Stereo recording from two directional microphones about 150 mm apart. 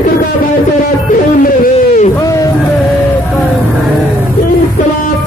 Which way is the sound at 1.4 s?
70° left (ahead or behind).